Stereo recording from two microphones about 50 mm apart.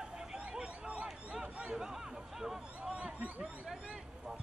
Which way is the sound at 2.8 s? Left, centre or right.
Centre.